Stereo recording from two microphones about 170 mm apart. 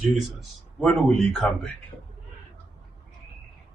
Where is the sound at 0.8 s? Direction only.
Centre (ahead or behind).